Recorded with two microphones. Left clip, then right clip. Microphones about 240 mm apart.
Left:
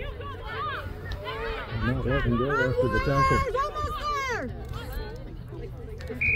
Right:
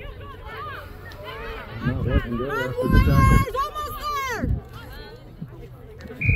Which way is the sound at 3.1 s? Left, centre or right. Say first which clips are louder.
Even; right.